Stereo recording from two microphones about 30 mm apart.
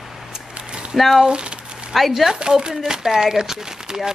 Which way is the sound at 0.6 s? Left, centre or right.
Right.